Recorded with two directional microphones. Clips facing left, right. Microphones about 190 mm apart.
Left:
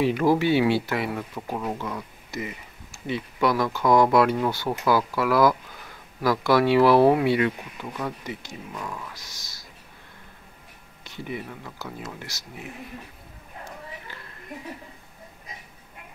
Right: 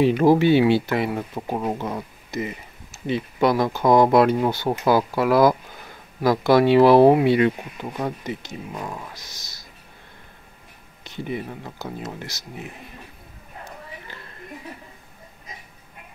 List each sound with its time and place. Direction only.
0.0 s speech: 25° right (ahead or behind)
11.1 s speech: 25° right (ahead or behind)